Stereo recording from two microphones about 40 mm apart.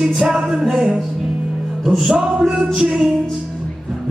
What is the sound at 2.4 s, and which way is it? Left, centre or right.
Music, centre.